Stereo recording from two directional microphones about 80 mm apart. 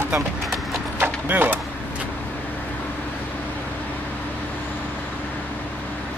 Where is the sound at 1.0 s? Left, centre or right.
Right.